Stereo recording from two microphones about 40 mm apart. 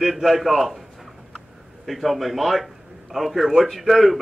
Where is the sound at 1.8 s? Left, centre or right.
Centre.